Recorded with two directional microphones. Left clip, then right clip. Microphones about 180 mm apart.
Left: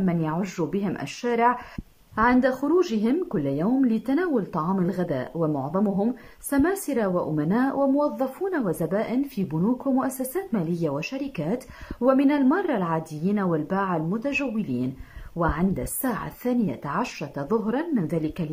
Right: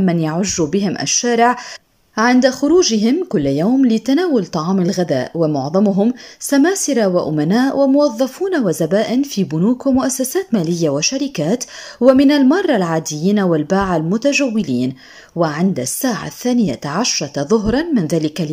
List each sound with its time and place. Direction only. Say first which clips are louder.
0.0 s speech: right 9 dB; 25° right (ahead or behind)
5.6 s speech: right 10 dB; 40° right (ahead or behind)
5.9 s speech: right 9 dB; 20° right (ahead or behind)